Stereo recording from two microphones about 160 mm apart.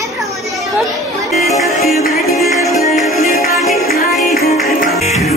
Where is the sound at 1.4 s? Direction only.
Centre (ahead or behind).